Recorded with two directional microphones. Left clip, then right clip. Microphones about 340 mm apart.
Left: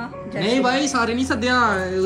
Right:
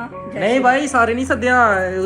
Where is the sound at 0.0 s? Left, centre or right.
Centre.